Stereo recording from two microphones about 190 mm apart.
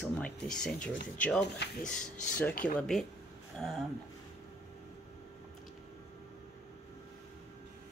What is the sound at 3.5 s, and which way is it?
Speech, centre (ahead or behind).